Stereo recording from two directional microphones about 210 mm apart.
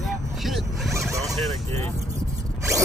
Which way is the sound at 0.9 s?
15° right (ahead or behind).